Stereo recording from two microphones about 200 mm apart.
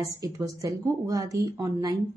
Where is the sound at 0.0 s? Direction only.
15° right (ahead or behind).